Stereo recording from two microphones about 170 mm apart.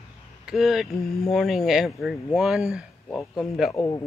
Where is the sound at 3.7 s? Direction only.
15° left (ahead or behind).